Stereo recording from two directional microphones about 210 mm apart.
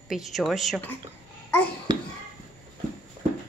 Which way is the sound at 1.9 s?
20° right (ahead or behind).